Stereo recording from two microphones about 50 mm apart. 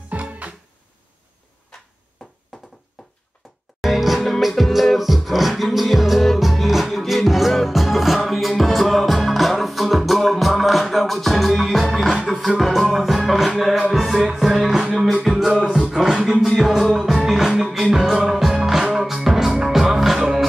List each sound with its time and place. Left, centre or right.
0.1 s music: right
3.4 s music: centre